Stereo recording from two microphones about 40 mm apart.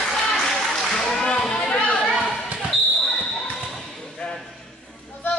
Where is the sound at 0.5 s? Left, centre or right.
Centre.